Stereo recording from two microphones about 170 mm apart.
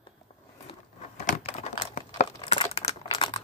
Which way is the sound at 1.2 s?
45° left (ahead or behind).